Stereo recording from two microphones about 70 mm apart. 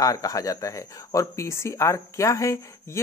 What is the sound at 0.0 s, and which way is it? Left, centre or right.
Speech, left.